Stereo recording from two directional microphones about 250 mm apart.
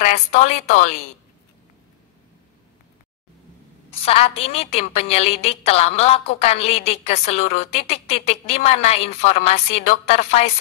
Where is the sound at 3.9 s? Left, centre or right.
Left.